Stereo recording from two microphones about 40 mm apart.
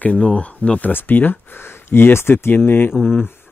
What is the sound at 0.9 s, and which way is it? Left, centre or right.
Speech, left.